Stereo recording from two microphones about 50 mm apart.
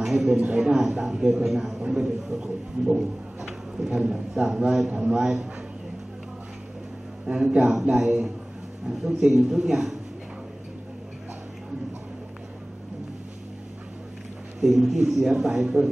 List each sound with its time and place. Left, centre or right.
0.0 s a man's voice: centre
2.8 s a sound: centre
4.1 s a man's voice: centre
7.4 s a man's voice: centre
14.6 s a man's voice: centre